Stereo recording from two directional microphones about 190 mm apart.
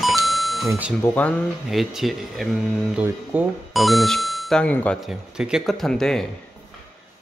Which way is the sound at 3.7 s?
Centre (ahead or behind).